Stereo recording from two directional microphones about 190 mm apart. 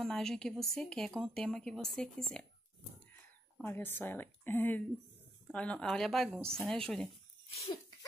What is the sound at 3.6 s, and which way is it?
A woman's voice, 10° left (ahead or behind).